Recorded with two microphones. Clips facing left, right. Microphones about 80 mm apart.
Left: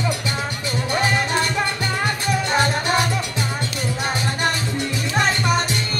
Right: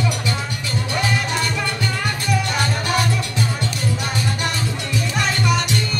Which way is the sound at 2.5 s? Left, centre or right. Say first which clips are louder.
Left 3 dB; left.